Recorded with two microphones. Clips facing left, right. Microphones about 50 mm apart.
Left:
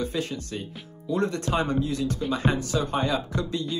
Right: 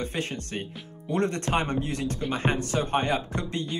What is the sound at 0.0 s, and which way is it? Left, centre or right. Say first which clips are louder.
Speech: left 2 dB; right.